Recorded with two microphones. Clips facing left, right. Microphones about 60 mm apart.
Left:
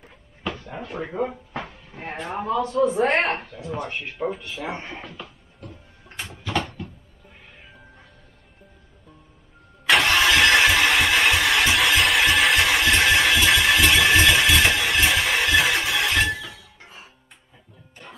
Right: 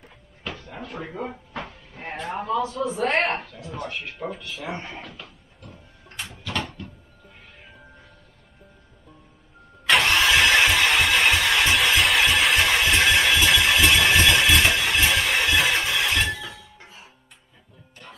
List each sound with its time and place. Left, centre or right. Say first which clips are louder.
0.0 s drawer open or close: left 5 dB; centre
1.5 s a sound: left 2 dB; centre
2.7 s a man's voice: left 7 dB; centre
3.3 s speech: left 3 dB; centre
4.8 s a sound: left 2 dB; centre
6.0 s door: left 2 dB; centre
9.8 s engine starting: left 1 dB; centre
18.0 s music: left 2 dB; centre